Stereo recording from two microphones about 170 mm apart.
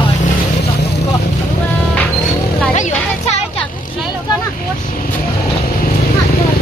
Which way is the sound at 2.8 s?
40° left (ahead or behind).